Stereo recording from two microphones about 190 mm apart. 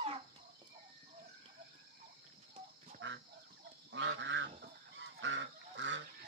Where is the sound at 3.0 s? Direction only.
90° right.